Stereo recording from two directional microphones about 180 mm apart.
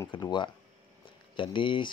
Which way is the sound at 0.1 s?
25° left (ahead or behind).